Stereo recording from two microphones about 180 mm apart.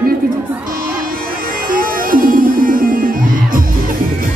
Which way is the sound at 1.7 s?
50° right (ahead or behind).